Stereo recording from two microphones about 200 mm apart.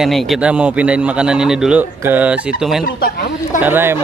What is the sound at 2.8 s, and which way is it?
Speech, 45° left (ahead or behind).